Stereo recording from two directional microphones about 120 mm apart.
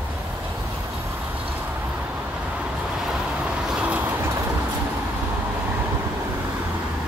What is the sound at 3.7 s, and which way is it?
Vehicle, 10° right (ahead or behind).